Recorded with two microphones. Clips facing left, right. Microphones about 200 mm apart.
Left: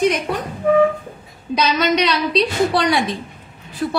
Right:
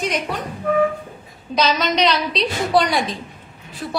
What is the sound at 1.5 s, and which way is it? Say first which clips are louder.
A woman's voice: left 1 dB; 60° left (ahead or behind).